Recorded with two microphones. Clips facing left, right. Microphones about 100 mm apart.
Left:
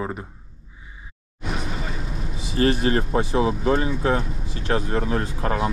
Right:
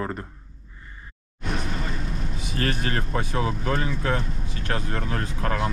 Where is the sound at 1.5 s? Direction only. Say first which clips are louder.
Even; centre (ahead or behind).